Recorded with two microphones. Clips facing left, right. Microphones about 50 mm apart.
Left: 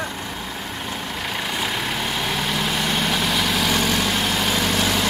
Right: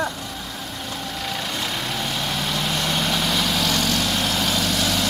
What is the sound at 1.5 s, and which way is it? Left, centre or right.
Vehicle, centre.